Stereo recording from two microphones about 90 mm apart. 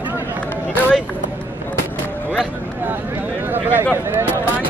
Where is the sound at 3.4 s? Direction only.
20° right (ahead or behind).